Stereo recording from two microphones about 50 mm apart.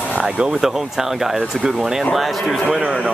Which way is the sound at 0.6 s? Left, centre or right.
Centre.